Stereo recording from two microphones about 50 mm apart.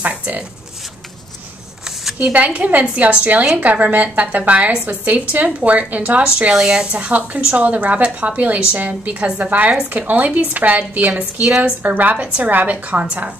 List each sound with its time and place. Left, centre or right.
0.0 s a sound: right
2.3 s a woman's voice: right
6.5 s a woman's voice: centre; by 13.0 s right